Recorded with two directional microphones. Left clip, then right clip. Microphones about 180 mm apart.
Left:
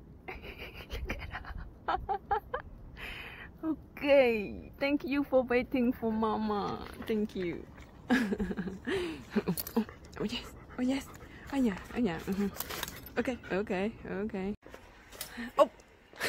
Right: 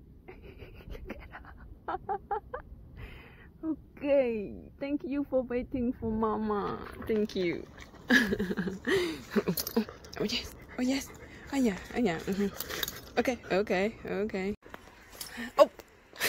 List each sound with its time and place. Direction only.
0.3 s a sound: centre (ahead or behind)
7.0 s speech: 30° right (ahead or behind)
7.3 s speech: 10° right (ahead or behind)
8.8 s speech: 15° right (ahead or behind)
9.3 s speech: centre (ahead or behind)
15.3 s a sound: centre (ahead or behind)